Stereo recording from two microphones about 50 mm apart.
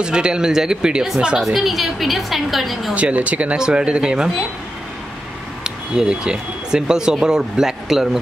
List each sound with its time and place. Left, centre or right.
0.0 s speech: centre
1.4 s a woman's voice: centre
2.9 s speech: right
5.6 s speech: centre